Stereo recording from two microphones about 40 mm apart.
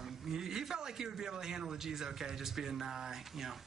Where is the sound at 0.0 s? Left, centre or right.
Centre.